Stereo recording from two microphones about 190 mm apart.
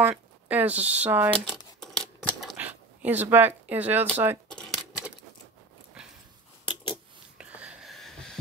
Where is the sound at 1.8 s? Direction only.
Centre (ahead or behind).